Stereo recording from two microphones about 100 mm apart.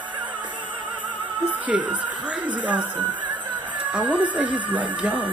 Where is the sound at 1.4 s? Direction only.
15° right (ahead or behind).